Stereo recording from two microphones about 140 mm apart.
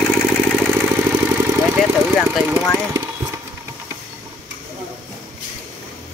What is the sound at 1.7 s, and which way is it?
Engine, centre (ahead or behind).